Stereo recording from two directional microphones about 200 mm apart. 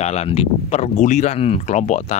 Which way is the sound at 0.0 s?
30° left (ahead or behind).